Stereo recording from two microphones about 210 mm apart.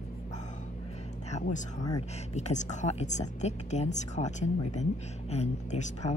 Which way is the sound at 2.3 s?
35° left (ahead or behind).